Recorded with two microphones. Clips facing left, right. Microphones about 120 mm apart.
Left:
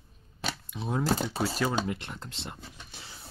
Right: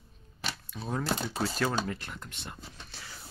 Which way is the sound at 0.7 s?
20° left (ahead or behind).